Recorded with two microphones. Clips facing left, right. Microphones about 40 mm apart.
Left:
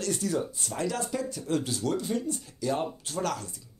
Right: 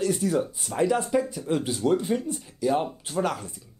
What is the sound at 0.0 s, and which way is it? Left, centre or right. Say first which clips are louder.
Speech: right 5 dB; centre.